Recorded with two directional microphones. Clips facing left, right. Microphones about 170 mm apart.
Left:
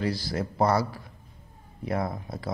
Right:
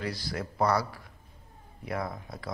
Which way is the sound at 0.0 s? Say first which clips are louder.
Left 6 dB; 30° left (ahead or behind).